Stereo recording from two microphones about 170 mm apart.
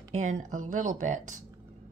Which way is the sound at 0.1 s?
45° right (ahead or behind).